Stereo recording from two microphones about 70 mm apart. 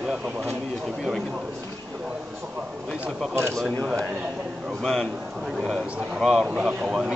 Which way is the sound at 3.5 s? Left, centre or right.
Centre.